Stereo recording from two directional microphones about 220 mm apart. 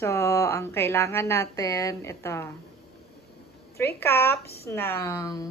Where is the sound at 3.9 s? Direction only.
10° left (ahead or behind).